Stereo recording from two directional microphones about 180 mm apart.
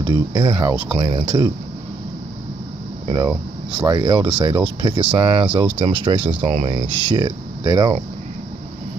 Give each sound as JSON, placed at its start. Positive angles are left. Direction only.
{"t": 0.0, "sound": "speech", "side_deg": -25}
{"t": 3.1, "sound": "speech", "side_deg": -25}